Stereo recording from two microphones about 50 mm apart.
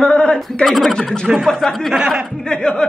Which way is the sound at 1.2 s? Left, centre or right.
Centre.